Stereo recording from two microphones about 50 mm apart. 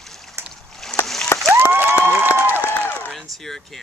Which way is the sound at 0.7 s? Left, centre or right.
Centre.